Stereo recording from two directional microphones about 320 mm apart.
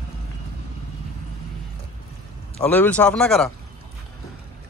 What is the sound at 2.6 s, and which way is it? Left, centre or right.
Speech, centre.